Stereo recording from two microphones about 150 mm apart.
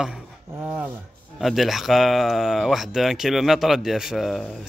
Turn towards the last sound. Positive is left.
turn(degrees=0)  # may be behind; listen again after turning